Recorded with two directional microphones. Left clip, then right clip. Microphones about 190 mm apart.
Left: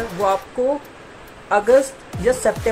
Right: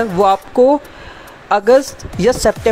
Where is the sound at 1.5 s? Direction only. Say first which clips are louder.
Right 4 dB; 50° right (ahead or behind).